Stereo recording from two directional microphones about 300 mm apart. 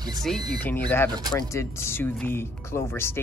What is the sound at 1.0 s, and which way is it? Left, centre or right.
Speech, centre.